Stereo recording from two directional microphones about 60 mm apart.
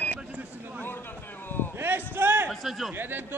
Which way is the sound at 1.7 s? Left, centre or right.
Right.